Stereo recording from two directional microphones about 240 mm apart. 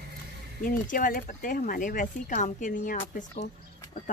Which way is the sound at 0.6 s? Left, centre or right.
Left.